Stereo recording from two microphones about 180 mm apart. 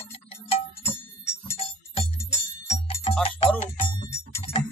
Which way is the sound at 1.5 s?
35° left (ahead or behind).